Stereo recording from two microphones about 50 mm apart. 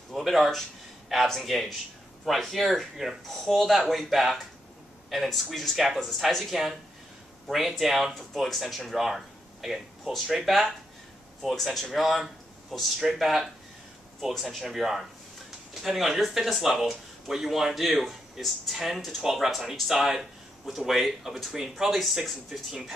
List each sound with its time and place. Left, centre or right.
0.1 s speech: centre